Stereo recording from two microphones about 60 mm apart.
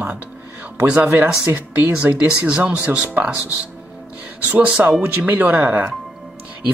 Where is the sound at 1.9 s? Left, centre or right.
Right.